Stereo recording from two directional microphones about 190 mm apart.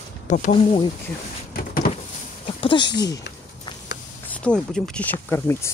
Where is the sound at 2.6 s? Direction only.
25° left (ahead or behind).